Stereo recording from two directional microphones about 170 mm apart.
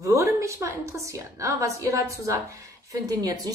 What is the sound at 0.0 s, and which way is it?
A woman's voice, 20° right (ahead or behind).